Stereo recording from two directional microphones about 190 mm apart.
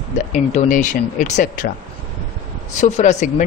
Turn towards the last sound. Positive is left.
turn(degrees=40)  # may be behind; listen again after turning